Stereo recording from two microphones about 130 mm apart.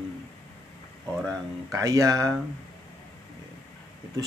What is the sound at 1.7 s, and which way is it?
Speech, 25° right (ahead or behind).